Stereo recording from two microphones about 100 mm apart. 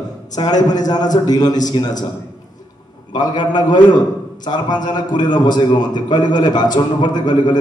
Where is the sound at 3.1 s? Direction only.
45° left (ahead or behind).